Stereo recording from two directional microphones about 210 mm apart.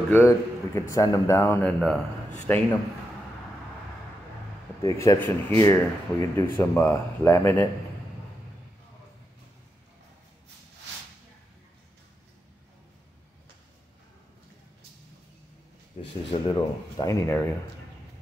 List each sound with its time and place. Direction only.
0.1 s a man's voice: 10° left (ahead or behind)
4.8 s speech: 15° left (ahead or behind)
16.0 s a sound: 35° left (ahead or behind)
16.3 s speech: 20° left (ahead or behind)